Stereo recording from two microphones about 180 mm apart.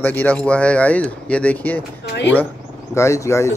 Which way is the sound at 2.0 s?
70° left (ahead or behind).